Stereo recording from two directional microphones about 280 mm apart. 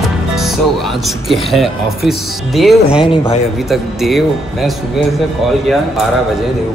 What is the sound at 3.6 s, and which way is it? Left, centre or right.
Speech, centre.